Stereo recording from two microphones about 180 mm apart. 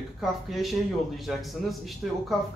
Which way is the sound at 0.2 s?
Centre (ahead or behind).